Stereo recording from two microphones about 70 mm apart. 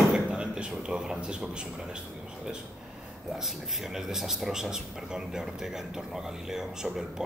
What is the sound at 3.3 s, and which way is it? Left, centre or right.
A man's voice, centre.